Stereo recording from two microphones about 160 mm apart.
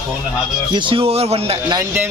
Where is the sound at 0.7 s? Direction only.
35° right (ahead or behind).